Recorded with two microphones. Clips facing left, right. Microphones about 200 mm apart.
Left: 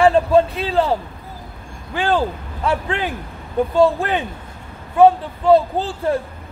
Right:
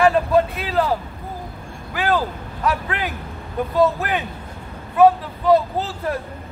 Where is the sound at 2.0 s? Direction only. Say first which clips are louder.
Left 2 dB; 30° left (ahead or behind).